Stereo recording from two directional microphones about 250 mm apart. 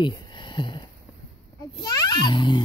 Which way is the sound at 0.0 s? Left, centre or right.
Centre.